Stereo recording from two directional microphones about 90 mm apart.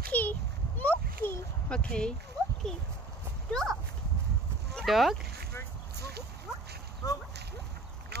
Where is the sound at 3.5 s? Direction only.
5° left (ahead or behind).